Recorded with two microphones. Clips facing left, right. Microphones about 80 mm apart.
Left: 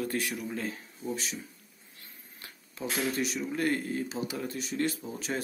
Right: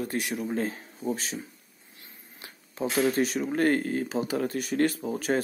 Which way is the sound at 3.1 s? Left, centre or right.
Right.